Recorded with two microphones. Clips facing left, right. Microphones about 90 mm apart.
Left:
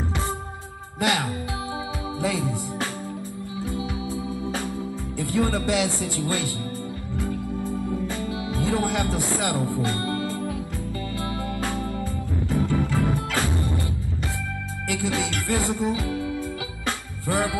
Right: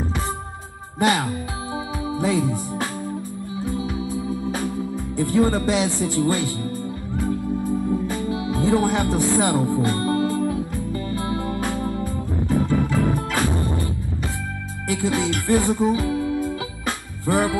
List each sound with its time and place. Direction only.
0.9 s speech: 25° right (ahead or behind)
2.1 s music: 20° right (ahead or behind)
5.1 s speech: 25° right (ahead or behind)
6.1 s music: 25° right (ahead or behind)
8.1 s music: 25° right (ahead or behind)
12.0 s organ: 20° right (ahead or behind)
14.9 s music: 20° right (ahead or behind)